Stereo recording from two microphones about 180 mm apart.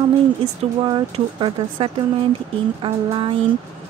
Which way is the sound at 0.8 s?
25° right (ahead or behind).